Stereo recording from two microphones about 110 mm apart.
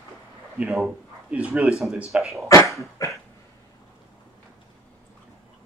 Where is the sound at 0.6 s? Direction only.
Centre (ahead or behind).